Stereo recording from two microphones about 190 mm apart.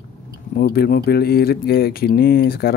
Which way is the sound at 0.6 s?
55° left (ahead or behind).